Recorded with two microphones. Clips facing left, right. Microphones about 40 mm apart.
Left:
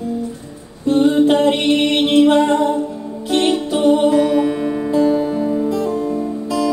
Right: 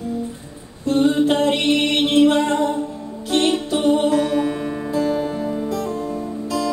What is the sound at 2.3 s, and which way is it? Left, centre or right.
A capella, left.